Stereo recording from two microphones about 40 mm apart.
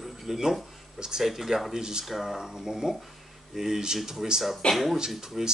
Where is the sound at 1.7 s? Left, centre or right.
Centre.